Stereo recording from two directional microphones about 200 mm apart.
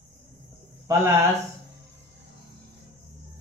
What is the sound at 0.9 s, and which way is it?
Speech, 10° right (ahead or behind).